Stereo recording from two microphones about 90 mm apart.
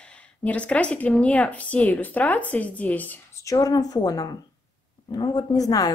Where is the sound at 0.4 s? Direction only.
15° left (ahead or behind).